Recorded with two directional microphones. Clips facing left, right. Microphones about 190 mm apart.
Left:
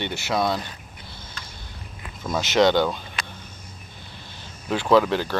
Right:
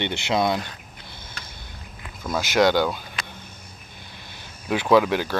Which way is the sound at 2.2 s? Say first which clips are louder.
Left 1 dB; 10° right (ahead or behind).